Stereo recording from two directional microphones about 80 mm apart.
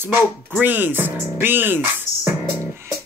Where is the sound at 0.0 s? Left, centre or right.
Right.